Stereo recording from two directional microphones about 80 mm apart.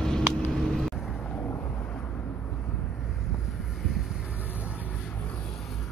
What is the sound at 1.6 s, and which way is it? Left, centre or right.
Vehicle, centre.